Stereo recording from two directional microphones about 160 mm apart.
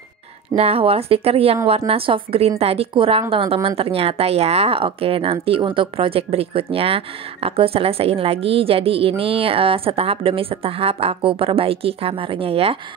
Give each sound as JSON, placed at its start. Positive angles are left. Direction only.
{"t": 0.6, "sound": "a woman's voice", "side_deg": -35}